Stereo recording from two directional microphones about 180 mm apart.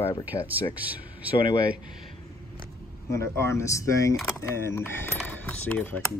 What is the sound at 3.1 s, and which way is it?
Speech, 15° left (ahead or behind).